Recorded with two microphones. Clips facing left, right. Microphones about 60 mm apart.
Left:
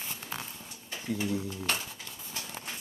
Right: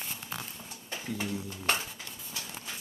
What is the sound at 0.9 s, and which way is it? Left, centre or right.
Speech, right.